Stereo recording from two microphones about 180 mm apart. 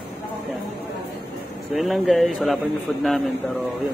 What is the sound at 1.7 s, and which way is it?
Speech, centre (ahead or behind).